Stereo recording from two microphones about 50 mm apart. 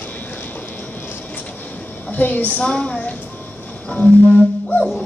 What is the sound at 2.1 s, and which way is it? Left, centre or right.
Speech, left.